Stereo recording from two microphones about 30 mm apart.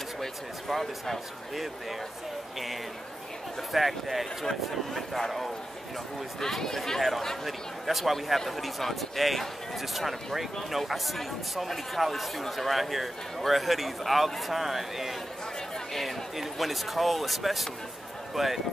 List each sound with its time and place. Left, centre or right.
0.2 s speech: centre
1.5 s speech: centre
3.7 s a man's voice: centre
15.9 s a sound: centre
16.3 s speech: centre